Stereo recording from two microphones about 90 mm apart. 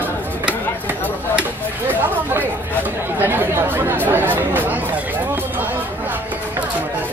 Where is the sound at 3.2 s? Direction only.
25° right (ahead or behind).